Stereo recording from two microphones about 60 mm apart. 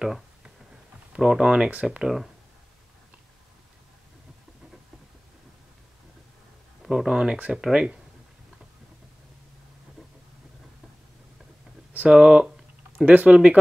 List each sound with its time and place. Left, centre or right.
0.0 s a sound: centre
1.1 s speech: centre
6.8 s speech: centre
11.9 s speech: right